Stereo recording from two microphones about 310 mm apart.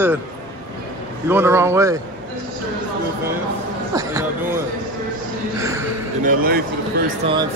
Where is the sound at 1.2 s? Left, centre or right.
Centre.